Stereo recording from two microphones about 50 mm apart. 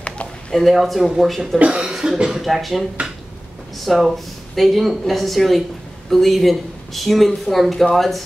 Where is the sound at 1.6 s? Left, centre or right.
Right.